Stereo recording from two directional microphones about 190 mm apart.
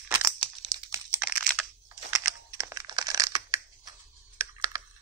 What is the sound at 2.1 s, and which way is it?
Computer keyboard, 15° right (ahead or behind).